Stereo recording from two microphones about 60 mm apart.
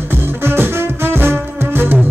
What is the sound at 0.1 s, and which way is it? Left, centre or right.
Music, right.